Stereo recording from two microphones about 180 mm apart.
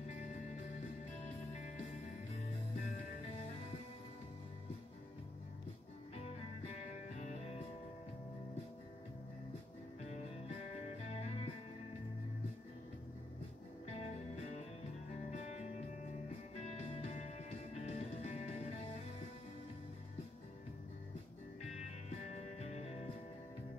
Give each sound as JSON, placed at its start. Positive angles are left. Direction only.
{"t": 1.5, "sound": "music", "side_deg": 40}
{"t": 6.1, "sound": "music", "side_deg": 35}
{"t": 11.1, "sound": "music", "side_deg": 35}
{"t": 13.9, "sound": "music", "side_deg": 40}
{"t": 16.6, "sound": "music", "side_deg": 35}
{"t": 22.3, "sound": "music", "side_deg": 35}